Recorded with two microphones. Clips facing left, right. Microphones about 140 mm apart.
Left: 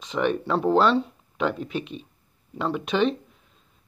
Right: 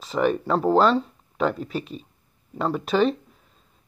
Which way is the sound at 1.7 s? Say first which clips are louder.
Even; 40° right (ahead or behind).